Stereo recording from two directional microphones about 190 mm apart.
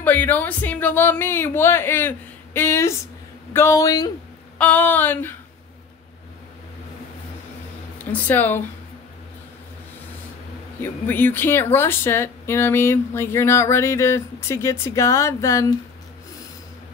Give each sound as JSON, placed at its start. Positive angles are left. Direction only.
{"t": 0.0, "sound": "speech", "side_deg": 10}
{"t": 4.6, "sound": "speech", "side_deg": 10}
{"t": 8.0, "sound": "speech", "side_deg": 10}
{"t": 10.8, "sound": "speech", "side_deg": 10}